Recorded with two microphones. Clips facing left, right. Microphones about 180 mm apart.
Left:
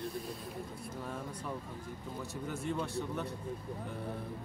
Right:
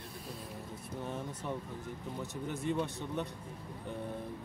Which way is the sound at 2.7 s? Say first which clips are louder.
Right 1 dB; 20° right (ahead or behind).